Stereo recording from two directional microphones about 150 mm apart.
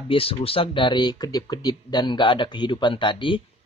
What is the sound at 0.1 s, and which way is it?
Speech, 40° left (ahead or behind).